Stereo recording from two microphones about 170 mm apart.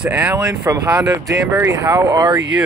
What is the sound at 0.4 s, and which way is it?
Speech, 20° right (ahead or behind).